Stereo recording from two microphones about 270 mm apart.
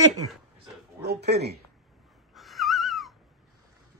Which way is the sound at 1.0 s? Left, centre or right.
Right.